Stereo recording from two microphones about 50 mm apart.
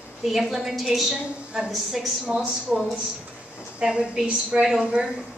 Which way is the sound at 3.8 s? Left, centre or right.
Centre.